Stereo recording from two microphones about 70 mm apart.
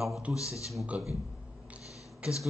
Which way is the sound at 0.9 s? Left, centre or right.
Centre.